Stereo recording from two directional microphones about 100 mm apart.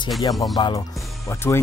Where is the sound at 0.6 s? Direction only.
50° left (ahead or behind).